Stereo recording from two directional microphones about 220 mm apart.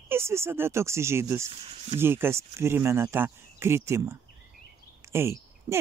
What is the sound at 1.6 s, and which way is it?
Speech, 30° right (ahead or behind).